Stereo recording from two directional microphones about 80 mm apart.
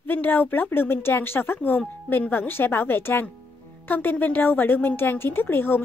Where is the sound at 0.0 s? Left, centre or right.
Left.